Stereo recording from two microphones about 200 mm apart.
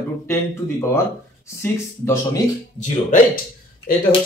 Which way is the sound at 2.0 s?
15° left (ahead or behind).